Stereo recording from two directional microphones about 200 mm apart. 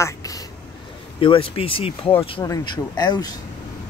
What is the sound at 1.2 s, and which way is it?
Speech, 25° left (ahead or behind).